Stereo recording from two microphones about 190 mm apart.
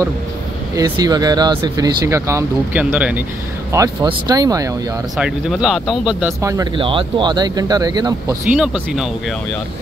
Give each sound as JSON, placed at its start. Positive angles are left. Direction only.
{"t": 0.7, "sound": "speech", "side_deg": -20}
{"t": 3.7, "sound": "speech", "side_deg": -20}
{"t": 5.1, "sound": "speech", "side_deg": 0}
{"t": 6.4, "sound": "speech", "side_deg": -20}
{"t": 8.5, "sound": "speech", "side_deg": -5}